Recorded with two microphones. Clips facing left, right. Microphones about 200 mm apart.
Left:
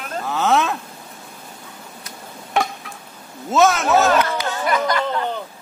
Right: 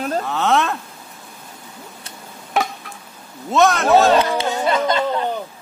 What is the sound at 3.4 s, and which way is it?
Speech, centre (ahead or behind).